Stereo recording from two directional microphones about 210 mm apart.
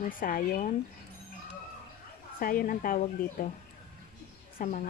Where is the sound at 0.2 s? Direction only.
40° left (ahead or behind).